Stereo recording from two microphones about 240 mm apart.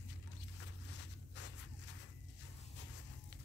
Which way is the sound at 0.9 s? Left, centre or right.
Left.